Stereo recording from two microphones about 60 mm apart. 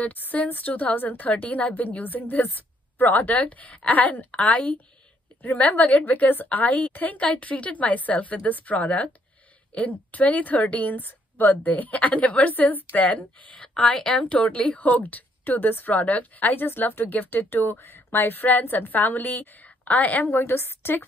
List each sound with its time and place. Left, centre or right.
0.0 s a woman's voice: left